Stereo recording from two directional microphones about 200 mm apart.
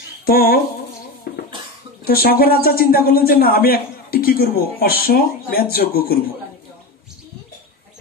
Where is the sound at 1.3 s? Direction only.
50° left (ahead or behind).